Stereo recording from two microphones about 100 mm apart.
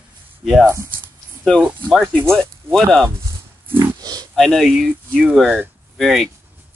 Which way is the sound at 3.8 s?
40° right (ahead or behind).